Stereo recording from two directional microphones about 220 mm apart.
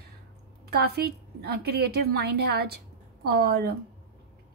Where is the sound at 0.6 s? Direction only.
45° right (ahead or behind).